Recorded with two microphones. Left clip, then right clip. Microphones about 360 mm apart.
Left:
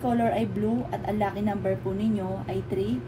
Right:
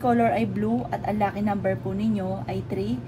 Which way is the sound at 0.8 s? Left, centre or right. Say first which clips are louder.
Right 3 dB; right.